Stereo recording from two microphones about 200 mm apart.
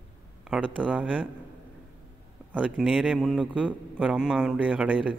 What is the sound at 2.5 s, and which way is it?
A man's voice, 5° right (ahead or behind).